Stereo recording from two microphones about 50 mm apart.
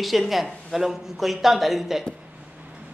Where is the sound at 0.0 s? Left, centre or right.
Centre.